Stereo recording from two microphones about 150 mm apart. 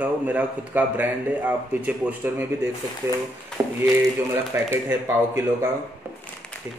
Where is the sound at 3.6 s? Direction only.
15° right (ahead or behind).